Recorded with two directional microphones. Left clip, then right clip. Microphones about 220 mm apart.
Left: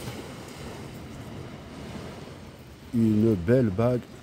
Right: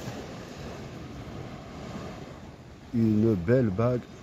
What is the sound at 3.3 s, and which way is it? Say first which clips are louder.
Speech: left 1 dB; 10° left (ahead or behind).